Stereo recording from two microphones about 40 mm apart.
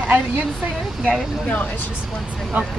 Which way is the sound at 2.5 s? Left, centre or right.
Right.